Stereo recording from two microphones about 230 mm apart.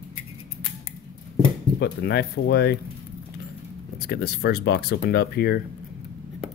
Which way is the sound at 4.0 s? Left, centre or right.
Left.